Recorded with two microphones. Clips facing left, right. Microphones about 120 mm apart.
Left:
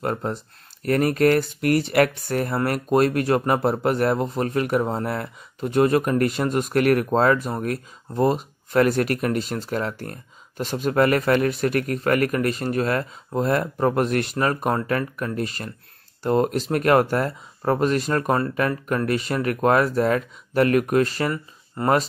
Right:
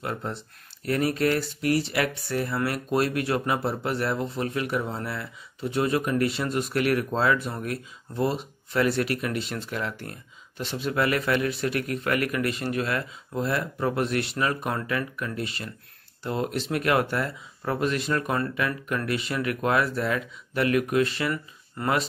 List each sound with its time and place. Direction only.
0.0 s speech: 45° left (ahead or behind)